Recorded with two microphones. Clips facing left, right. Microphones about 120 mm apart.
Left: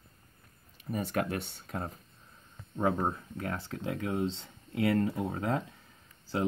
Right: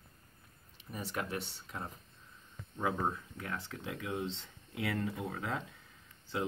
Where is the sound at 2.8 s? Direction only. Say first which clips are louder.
Left 5 dB; 35° left (ahead or behind).